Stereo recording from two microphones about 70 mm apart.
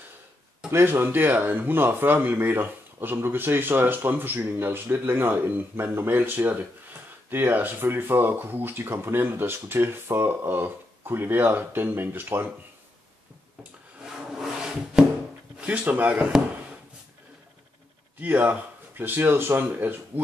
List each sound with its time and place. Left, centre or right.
0.7 s speech: right
14.3 s a sound: centre
15.6 s speech: right
18.2 s speech: right